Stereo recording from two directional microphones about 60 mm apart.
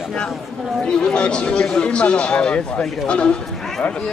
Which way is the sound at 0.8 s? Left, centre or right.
Centre.